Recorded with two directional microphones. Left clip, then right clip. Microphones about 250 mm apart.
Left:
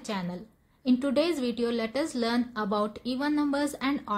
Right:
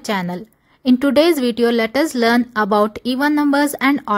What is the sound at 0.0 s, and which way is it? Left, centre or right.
Speech, right.